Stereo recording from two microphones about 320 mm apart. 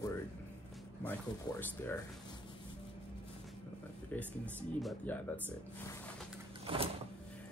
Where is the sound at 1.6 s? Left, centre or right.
Centre.